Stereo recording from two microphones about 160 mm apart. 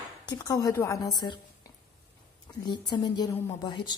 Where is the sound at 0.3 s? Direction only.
25° left (ahead or behind).